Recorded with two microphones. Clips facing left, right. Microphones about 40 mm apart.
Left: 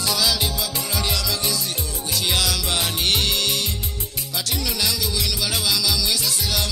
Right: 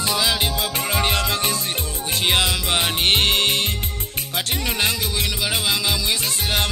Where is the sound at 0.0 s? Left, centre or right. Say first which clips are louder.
Right 2 dB; right.